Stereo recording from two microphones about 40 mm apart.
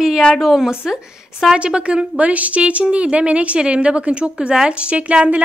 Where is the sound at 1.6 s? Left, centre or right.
Right.